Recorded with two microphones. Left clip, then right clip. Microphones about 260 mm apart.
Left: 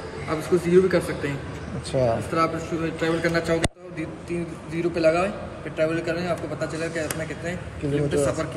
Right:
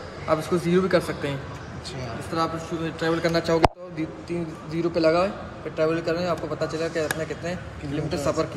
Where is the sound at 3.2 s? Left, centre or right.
Centre.